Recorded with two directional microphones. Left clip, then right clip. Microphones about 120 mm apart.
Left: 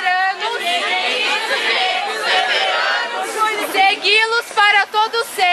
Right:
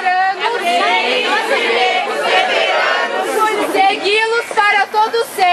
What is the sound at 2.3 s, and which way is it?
Chatter, 15° left (ahead or behind).